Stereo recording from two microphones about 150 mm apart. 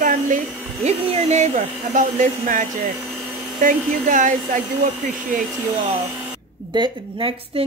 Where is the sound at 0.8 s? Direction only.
45° right (ahead or behind); by 2.7 s 60° right (ahead or behind).